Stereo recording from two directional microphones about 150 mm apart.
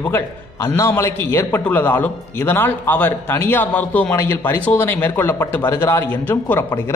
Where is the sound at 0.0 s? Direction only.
15° left (ahead or behind).